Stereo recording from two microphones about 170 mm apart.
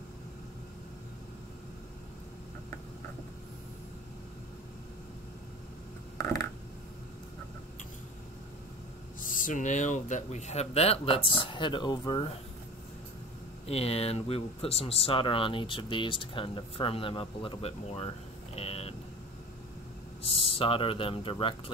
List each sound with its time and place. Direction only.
9.3 s speech: 50° left (ahead or behind); by 12.3 s 25° left (ahead or behind)
13.7 s speech: 35° left (ahead or behind)
20.2 s speech: 35° left (ahead or behind)